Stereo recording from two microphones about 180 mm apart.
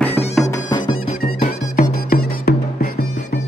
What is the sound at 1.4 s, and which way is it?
Music, 50° left (ahead or behind).